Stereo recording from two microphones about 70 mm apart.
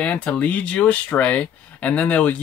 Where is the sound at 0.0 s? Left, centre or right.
Centre.